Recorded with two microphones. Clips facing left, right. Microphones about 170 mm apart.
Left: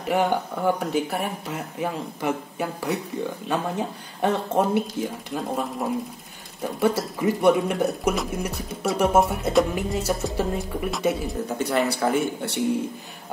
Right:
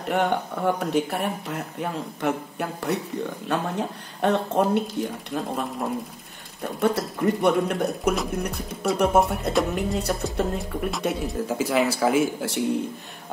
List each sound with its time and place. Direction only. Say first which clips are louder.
0.1 s speech: left 1 dB; 5° left (ahead or behind)